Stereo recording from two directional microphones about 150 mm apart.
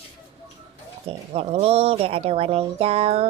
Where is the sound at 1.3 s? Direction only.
40° right (ahead or behind).